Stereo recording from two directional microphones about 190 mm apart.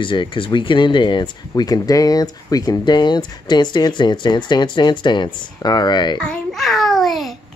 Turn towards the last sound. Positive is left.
turn(degrees=0)  # may be behind; listen again after turning